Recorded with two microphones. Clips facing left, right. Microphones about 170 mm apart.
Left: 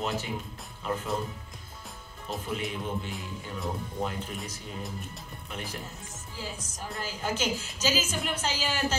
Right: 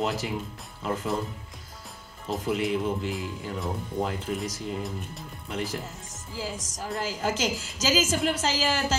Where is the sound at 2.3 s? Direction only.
90° right.